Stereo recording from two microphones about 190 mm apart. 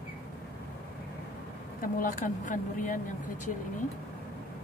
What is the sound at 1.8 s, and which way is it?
Speech, 45° left (ahead or behind).